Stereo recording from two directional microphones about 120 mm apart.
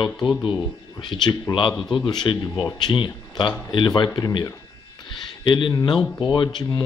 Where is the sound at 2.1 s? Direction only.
35° left (ahead or behind).